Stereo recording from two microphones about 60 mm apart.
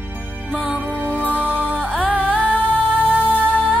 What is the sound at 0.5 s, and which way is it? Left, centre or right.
Music, right.